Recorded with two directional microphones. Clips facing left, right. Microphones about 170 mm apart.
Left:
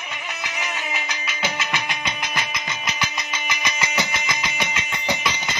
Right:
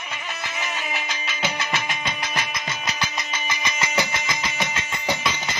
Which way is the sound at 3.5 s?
20° left (ahead or behind).